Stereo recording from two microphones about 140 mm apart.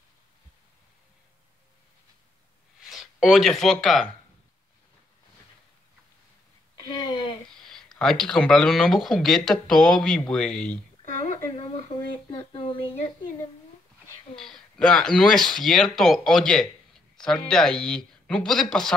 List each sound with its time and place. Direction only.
2.8 s speech: centre (ahead or behind)
7.6 s speech: 5° left (ahead or behind)
11.1 s a sound: 55° left (ahead or behind); by 12.8 s 35° left (ahead or behind)
14.3 s speech: 5° left (ahead or behind)